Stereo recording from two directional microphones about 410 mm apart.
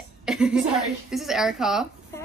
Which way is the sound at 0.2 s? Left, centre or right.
Centre.